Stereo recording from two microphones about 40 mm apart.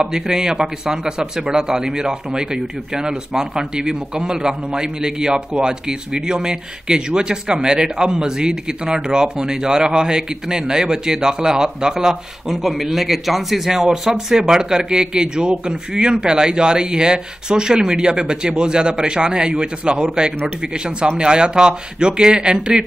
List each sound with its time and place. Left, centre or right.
0.0 s speech: centre